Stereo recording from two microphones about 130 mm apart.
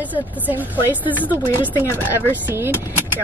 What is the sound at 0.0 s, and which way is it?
Speech, 15° right (ahead or behind).